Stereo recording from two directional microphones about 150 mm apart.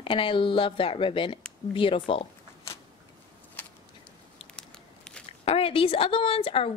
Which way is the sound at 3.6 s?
10° left (ahead or behind).